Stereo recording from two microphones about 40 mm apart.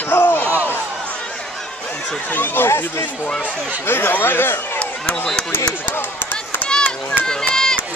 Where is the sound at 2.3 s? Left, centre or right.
Left.